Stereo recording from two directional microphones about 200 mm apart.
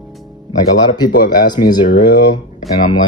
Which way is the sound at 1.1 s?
50° left (ahead or behind).